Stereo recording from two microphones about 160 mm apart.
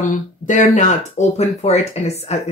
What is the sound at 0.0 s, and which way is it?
Speech, 50° left (ahead or behind).